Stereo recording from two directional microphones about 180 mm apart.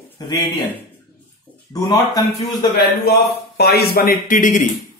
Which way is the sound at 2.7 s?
60° left (ahead or behind).